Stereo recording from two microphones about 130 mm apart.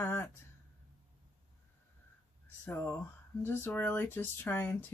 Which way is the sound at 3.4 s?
15° left (ahead or behind).